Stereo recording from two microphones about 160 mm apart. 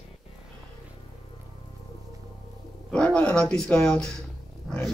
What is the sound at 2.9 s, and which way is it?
A man's voice, 5° left (ahead or behind).